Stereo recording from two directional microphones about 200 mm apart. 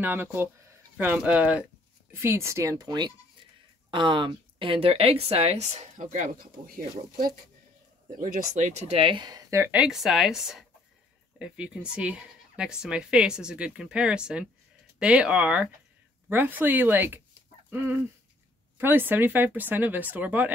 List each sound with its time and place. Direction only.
0.0 s speech: 10° right (ahead or behind)
17.6 s chicken: 10° right (ahead or behind)
18.8 s speech: 10° right (ahead or behind)